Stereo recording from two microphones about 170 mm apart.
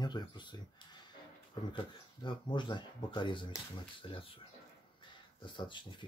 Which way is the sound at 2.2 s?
25° left (ahead or behind).